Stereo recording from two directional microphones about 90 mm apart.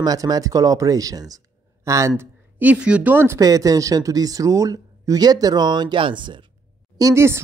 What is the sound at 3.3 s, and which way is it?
Speech, 40° right (ahead or behind).